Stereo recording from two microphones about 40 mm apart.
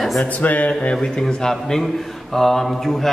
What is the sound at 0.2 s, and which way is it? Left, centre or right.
Speech, left.